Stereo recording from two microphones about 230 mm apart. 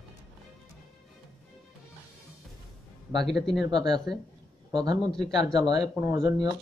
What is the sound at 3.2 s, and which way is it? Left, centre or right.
Speech, centre.